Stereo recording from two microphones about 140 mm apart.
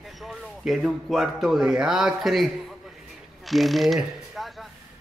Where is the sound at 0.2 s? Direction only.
Centre (ahead or behind).